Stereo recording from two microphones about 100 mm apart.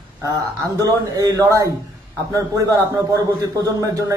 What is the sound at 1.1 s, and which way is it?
A man's voice, 35° right (ahead or behind).